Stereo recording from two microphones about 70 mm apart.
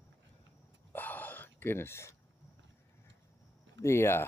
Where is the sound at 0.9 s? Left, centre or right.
Left.